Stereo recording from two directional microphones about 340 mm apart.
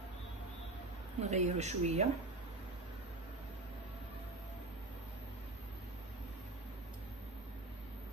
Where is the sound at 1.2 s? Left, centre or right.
Centre.